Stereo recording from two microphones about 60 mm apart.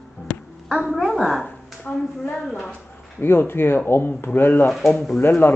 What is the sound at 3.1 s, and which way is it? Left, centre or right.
Speech, left.